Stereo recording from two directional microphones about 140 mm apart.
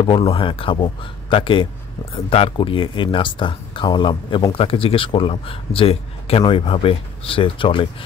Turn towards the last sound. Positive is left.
turn(degrees=40)  # may be behind; listen again after turning